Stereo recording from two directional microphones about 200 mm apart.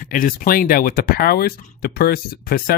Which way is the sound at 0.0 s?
45° left (ahead or behind).